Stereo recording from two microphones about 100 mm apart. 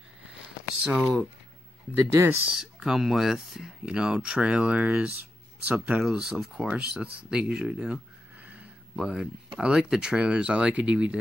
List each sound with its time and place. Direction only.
0.8 s speech: 10° right (ahead or behind)
2.2 s speech: 30° right (ahead or behind)
2.6 s speech: 5° right (ahead or behind)